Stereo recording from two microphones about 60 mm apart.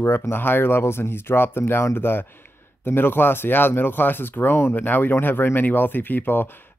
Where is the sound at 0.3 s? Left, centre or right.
Left.